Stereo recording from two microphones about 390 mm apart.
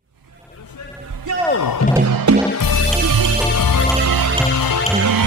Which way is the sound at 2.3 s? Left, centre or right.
Right.